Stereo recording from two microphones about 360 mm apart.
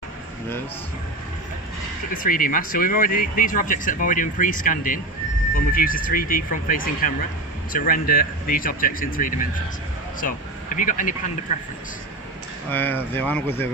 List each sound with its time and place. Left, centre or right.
2.2 s speech: left
12.7 s speech: centre